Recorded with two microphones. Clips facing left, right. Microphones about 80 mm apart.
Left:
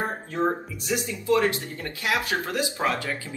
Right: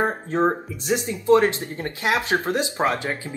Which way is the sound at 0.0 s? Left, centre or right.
Right.